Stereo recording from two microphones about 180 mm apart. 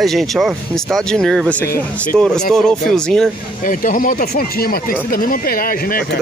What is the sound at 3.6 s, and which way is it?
Speech, 50° left (ahead or behind).